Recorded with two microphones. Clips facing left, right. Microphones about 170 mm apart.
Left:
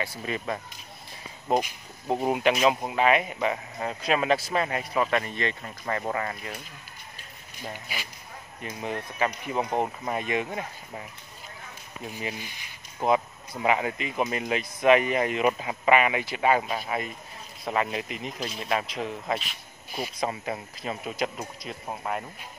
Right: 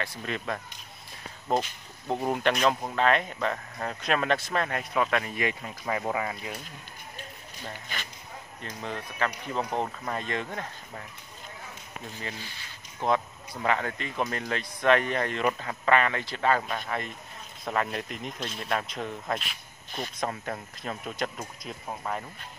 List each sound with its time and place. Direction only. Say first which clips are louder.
0.0 s speech: left 2 dB; 5° left (ahead or behind)
7.6 s speech: left 2 dB; 10° left (ahead or behind)
12.1 s speech: left 5 dB; 15° left (ahead or behind)